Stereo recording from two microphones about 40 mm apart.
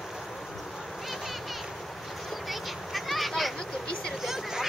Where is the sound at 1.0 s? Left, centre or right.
Centre.